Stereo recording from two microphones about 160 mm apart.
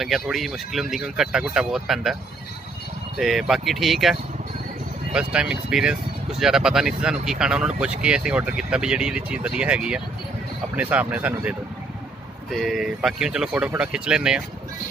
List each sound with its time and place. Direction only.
0.0 s speech: centre (ahead or behind)
3.2 s speech: centre (ahead or behind)